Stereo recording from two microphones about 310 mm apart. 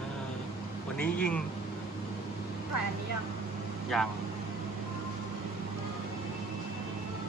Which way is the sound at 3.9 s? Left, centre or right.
Centre.